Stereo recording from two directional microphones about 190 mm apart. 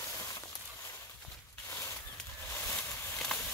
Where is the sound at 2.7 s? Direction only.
5° left (ahead or behind).